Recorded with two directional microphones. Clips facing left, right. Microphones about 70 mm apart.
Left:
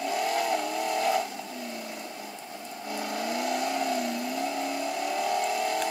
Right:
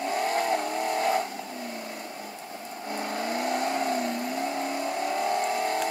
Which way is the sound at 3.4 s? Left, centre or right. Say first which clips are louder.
Right 2 dB; right.